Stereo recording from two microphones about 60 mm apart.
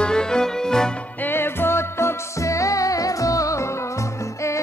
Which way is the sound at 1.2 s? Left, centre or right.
Left.